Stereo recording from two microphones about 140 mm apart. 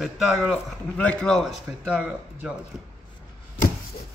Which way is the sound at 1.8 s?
5° right (ahead or behind).